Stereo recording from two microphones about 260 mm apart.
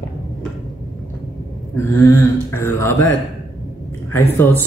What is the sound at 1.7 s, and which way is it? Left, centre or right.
Speech, centre.